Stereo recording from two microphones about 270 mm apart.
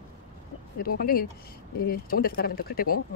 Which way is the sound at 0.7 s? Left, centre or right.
Left.